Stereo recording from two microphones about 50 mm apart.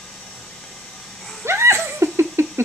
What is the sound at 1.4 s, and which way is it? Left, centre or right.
Wheeze, right.